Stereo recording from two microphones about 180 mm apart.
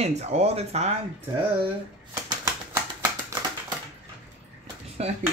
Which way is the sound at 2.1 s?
20° right (ahead or behind).